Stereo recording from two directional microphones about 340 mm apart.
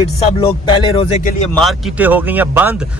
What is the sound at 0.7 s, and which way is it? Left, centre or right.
Speech, centre.